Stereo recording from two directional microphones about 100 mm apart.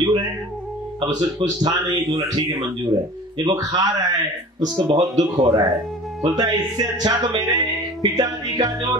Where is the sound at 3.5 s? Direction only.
40° right (ahead or behind).